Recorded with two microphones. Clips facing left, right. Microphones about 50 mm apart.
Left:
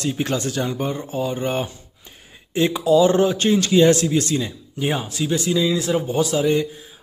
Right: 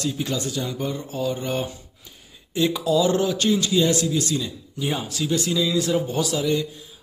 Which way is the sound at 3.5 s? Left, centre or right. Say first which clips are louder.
Left 6 dB; left.